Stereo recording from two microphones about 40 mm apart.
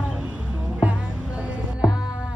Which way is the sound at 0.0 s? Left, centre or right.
Right.